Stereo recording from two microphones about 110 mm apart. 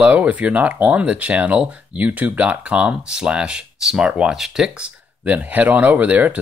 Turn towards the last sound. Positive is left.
turn(degrees=-15)  # may be behind; listen again after turning